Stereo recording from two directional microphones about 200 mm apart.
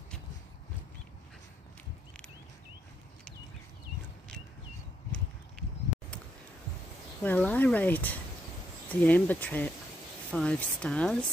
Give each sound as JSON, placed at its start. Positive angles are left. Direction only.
{"t": 7.2, "sound": "speech", "side_deg": 10}